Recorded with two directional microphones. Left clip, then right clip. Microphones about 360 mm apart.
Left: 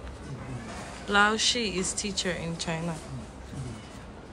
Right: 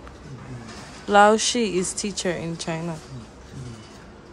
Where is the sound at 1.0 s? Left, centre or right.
Centre.